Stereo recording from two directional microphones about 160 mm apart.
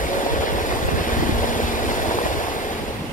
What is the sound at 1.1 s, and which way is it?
Vehicle, 55° left (ahead or behind).